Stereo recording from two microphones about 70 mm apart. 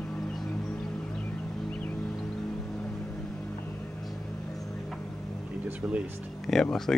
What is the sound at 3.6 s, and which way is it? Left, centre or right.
Vehicle, left.